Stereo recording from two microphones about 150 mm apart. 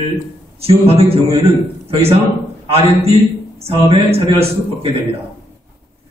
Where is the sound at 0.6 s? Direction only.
40° right (ahead or behind).